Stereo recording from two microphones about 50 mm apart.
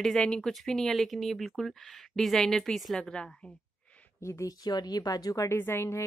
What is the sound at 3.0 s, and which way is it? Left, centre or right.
Speech, centre.